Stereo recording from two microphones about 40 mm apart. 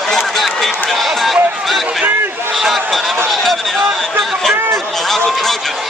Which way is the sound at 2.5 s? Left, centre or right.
Centre.